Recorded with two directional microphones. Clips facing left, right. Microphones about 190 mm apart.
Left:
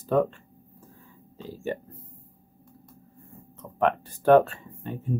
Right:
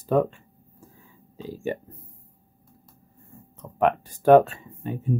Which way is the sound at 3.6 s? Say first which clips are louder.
Right 2 dB; 15° right (ahead or behind).